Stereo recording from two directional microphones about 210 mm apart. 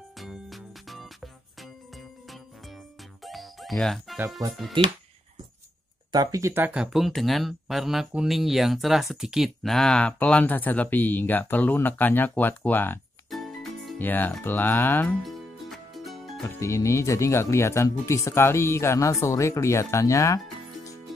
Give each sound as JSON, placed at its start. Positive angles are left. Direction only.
{"t": 0.2, "sound": "music", "side_deg": 0}
{"t": 4.4, "sound": "speech", "side_deg": -15}
{"t": 6.1, "sound": "speech", "side_deg": -15}
{"t": 16.4, "sound": "speech", "side_deg": 15}